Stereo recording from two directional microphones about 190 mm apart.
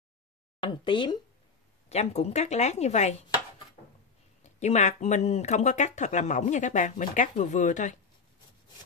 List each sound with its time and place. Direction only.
0.6 s speech: 25° left (ahead or behind)
4.4 s speech: 35° left (ahead or behind)